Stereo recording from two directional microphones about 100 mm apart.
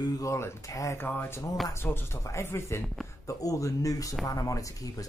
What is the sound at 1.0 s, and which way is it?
Speech, 20° left (ahead or behind).